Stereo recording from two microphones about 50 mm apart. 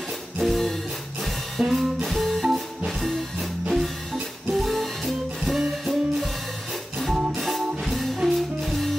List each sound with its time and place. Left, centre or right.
0.4 s music: centre
7.3 s music: centre